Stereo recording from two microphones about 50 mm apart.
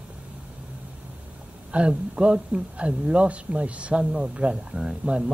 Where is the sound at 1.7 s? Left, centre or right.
Right.